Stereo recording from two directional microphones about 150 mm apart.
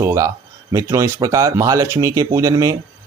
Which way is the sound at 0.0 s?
20° right (ahead or behind).